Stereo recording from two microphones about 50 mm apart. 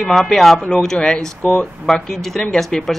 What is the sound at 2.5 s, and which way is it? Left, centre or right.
Speech, centre.